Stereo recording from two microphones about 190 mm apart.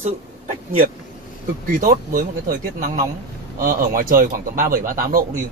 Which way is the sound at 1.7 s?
45° right (ahead or behind).